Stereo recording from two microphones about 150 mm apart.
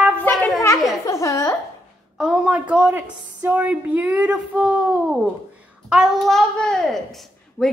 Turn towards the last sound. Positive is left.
turn(degrees=0)  # may be behind; listen again after turning